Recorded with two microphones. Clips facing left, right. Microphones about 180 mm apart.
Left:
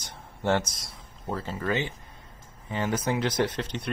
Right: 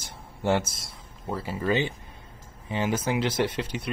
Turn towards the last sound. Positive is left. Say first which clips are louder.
# even
turn(degrees=-5)  # may be behind; listen again after turning